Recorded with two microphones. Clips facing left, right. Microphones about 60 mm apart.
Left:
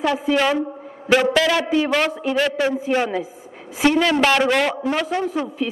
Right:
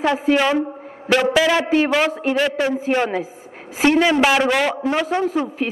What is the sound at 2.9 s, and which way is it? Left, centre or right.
Speech, right.